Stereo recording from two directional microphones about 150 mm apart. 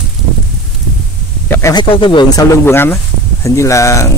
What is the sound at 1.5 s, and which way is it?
Speech, 25° left (ahead or behind).